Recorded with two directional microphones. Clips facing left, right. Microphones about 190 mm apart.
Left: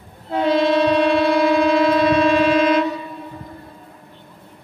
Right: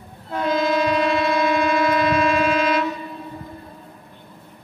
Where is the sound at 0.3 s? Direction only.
30° left (ahead or behind).